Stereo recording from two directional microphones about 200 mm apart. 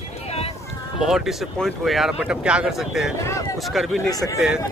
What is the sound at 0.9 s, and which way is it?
Speech, centre (ahead or behind).